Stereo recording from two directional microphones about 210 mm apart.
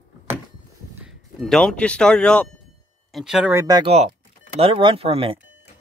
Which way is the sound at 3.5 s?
20° right (ahead or behind).